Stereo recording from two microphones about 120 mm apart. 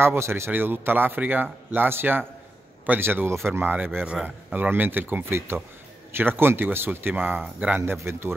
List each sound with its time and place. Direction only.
0.0 s a man's voice: 20° right (ahead or behind)